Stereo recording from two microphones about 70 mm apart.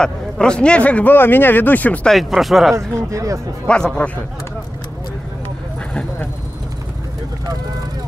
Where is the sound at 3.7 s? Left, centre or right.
Centre.